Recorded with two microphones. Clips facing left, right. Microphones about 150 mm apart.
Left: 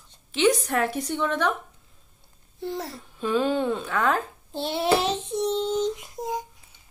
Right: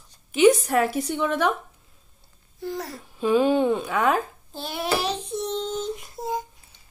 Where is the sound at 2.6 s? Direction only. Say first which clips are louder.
Even; 25° left (ahead or behind).